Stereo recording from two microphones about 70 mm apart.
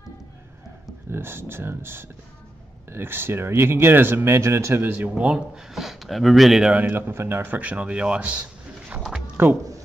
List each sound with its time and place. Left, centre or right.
1.1 s speech: right
4.9 s speech: centre
6.6 s speech: right
9.4 s speech: right